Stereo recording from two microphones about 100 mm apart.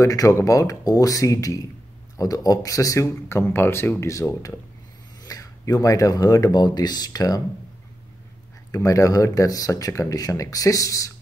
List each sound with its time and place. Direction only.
0.0 s speech: 35° left (ahead or behind)
8.7 s speech: 35° left (ahead or behind)